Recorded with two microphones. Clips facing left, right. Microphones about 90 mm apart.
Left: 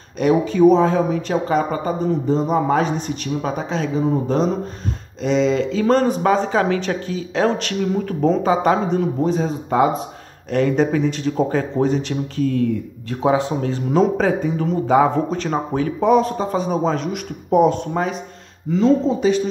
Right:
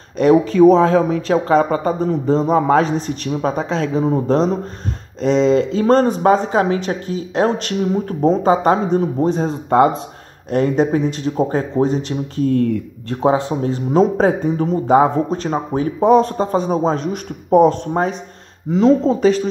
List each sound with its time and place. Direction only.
0.3 s speech: 55° right (ahead or behind); by 4.0 s 70° right (ahead or behind)
5.2 s speech: 35° right (ahead or behind)
6.2 s speech: 25° right (ahead or behind)
9.4 s speech: 55° right (ahead or behind)
10.5 s speech: 30° right (ahead or behind)
12.5 s speech: 50° right (ahead or behind)
13.2 s speech: 35° right (ahead or behind)
18.7 s speech: 75° right (ahead or behind)
19.0 s speech: 45° right (ahead or behind)